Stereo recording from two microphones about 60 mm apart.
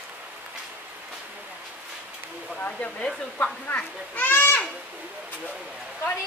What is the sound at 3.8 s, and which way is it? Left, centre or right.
Speech, left.